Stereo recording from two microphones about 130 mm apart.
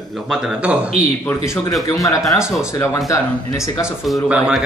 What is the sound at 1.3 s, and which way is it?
Speech, 25° left (ahead or behind).